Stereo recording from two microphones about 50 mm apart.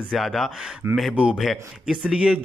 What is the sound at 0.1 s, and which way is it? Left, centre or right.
Speech, centre.